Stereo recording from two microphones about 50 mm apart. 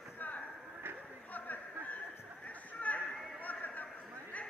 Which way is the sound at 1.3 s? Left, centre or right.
Left.